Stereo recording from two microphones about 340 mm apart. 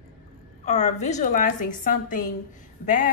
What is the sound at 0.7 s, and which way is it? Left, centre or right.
A woman's voice, centre.